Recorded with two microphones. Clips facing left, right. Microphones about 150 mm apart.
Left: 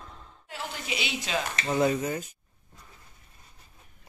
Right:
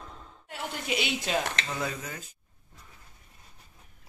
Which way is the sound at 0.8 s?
50° right (ahead or behind).